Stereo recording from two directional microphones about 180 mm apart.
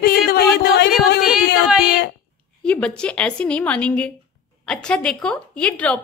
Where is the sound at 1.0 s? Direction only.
65° left (ahead or behind).